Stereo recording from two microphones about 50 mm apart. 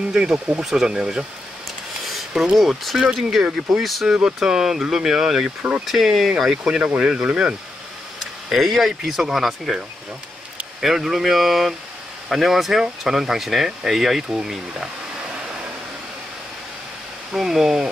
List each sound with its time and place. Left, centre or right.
0.1 s speech: centre
2.5 s speech: centre
8.2 s speech: centre
10.8 s speech: centre
17.3 s speech: centre